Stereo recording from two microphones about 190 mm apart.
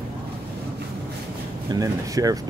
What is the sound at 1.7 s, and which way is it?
Speech, 15° right (ahead or behind).